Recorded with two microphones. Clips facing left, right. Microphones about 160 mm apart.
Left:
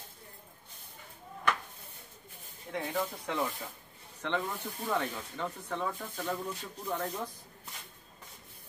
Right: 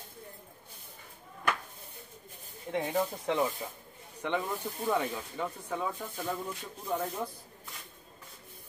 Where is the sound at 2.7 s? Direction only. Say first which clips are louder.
Right 4 dB; 25° right (ahead or behind).